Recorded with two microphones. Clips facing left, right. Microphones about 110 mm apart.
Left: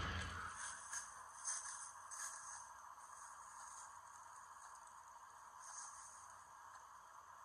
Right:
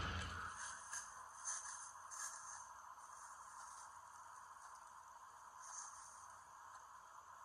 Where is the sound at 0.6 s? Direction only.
50° right (ahead or behind).